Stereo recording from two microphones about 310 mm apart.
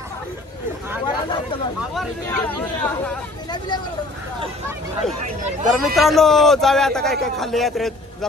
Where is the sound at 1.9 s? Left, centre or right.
Centre.